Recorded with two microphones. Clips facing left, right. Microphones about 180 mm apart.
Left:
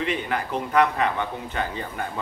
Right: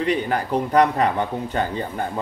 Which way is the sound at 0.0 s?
40° right (ahead or behind).